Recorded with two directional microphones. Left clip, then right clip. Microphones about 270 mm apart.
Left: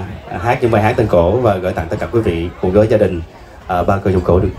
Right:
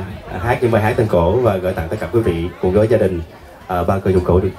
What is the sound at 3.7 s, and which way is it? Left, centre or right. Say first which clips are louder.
Speech: left 2 dB; left.